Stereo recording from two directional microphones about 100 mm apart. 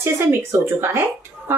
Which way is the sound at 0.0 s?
25° right (ahead or behind).